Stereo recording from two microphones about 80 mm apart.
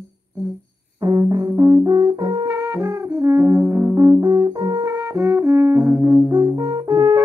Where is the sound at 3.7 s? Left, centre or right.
Right.